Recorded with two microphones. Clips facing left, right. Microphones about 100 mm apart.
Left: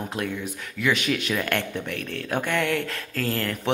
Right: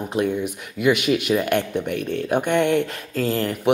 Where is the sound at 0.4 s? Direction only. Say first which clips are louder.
Right 5 dB; 15° right (ahead or behind).